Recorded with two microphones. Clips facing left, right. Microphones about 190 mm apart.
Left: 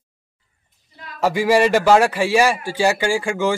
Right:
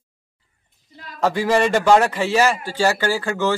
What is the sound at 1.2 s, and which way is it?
A man's voice, 10° left (ahead or behind).